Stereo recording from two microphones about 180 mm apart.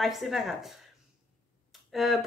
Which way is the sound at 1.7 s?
Centre (ahead or behind).